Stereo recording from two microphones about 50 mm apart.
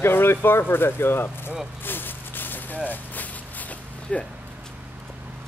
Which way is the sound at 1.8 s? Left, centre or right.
Left.